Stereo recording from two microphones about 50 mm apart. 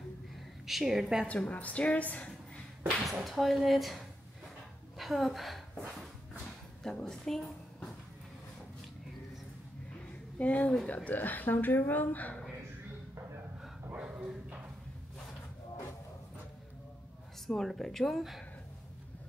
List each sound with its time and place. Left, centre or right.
0.7 s speech: centre
1.2 s a woman's voice: left
3.0 s speech: centre
4.9 s a sound: centre
6.8 s a woman's voice: centre
10.4 s a woman's voice: left
13.9 s dog: right
17.5 s speech: centre
18.1 s speech: centre